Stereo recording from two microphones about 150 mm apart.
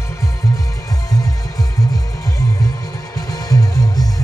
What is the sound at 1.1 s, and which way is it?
Music, 25° left (ahead or behind).